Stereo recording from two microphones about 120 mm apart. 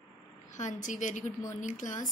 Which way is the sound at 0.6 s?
90° left.